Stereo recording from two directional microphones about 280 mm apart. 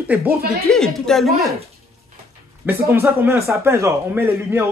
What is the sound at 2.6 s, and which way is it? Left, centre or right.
Speech, centre.